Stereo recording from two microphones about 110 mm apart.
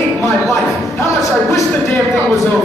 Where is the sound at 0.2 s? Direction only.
25° left (ahead or behind).